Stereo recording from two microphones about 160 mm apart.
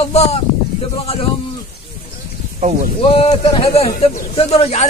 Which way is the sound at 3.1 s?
35° left (ahead or behind).